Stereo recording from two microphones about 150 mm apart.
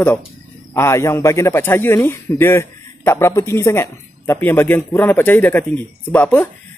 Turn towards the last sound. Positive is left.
turn(degrees=10)  # may be behind; listen again after turning